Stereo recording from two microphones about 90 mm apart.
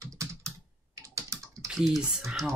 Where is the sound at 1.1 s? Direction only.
35° right (ahead or behind).